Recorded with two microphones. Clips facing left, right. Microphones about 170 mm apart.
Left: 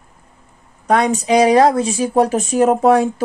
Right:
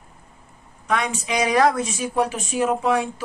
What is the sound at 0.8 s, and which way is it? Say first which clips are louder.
Speech: left 9 dB; 35° left (ahead or behind).